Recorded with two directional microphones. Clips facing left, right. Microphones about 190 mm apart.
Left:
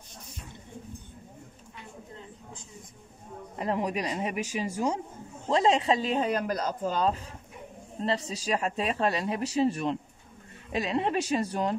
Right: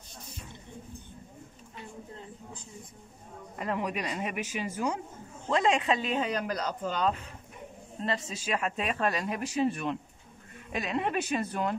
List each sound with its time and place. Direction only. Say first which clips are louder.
3.5 s speech: left 3 dB; 30° left (ahead or behind)